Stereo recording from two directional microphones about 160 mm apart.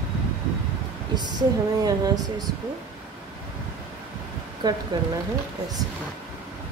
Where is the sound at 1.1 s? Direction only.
25° right (ahead or behind).